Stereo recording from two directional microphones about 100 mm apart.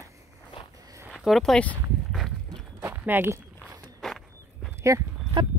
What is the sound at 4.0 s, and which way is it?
Walk, centre (ahead or behind).